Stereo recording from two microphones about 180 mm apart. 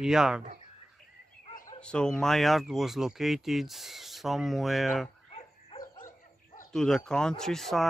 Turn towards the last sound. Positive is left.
turn(degrees=0)  # may be behind; listen again after turning